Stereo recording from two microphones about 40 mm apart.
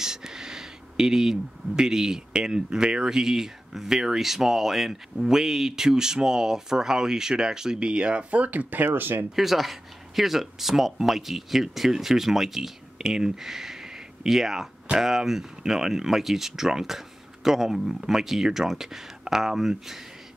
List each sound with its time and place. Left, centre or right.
0.0 s speech: centre; by 8.8 s right
8.8 s speech: right
9.3 s speech: centre